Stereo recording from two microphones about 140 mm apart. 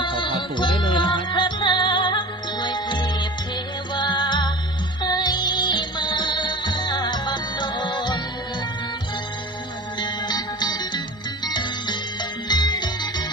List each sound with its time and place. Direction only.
0.0 s music: 35° left (ahead or behind)
9.9 s music: 30° left (ahead or behind)